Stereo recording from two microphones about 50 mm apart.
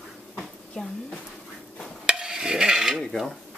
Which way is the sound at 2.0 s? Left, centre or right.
Centre.